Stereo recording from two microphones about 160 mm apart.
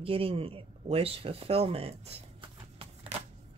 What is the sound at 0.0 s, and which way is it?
Speech, 35° right (ahead or behind).